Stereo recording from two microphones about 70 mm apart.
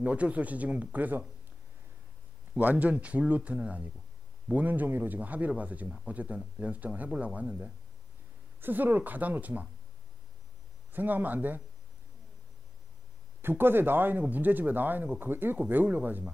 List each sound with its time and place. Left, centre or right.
0.0 s speech: centre
2.6 s speech: right
10.9 s speech: right
13.4 s speech: right